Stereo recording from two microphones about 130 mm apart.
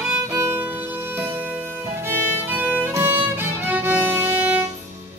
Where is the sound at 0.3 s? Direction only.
15° right (ahead or behind).